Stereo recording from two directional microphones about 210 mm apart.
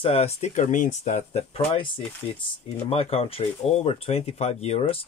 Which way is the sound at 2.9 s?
25° left (ahead or behind).